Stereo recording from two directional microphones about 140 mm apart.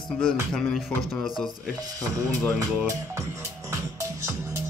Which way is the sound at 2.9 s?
20° right (ahead or behind).